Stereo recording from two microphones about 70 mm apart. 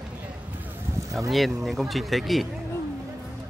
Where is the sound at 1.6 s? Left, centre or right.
Centre.